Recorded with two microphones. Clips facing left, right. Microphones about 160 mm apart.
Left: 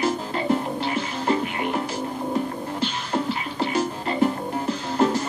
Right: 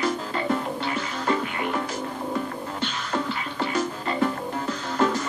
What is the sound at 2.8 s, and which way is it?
Music, 30° left (ahead or behind).